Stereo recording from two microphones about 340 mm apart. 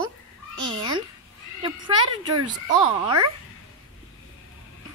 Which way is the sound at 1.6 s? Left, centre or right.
Centre.